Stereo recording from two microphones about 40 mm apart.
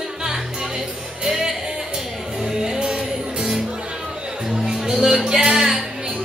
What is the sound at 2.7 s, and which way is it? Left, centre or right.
Music, right.